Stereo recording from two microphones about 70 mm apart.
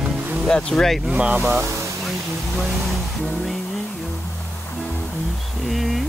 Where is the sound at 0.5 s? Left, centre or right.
Centre.